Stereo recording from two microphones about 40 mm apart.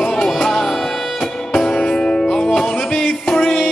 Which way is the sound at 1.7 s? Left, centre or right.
Left.